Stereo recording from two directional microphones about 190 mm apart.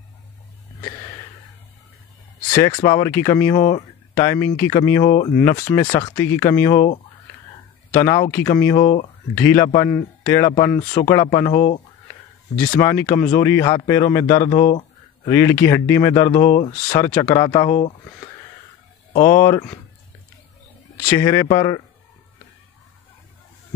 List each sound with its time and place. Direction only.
2.5 s speech: 20° left (ahead or behind)
7.9 s speech: 15° left (ahead or behind)
12.6 s speech: 10° left (ahead or behind)
17.6 s speech: 40° left (ahead or behind)
19.2 s speech: 15° left (ahead or behind)
21.1 s speech: 15° left (ahead or behind)